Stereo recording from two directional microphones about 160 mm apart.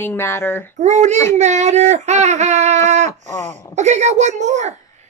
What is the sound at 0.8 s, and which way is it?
Speech, 45° right (ahead or behind).